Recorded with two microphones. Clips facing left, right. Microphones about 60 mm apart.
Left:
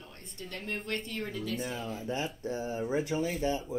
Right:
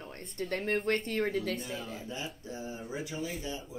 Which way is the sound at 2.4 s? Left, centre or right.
Left.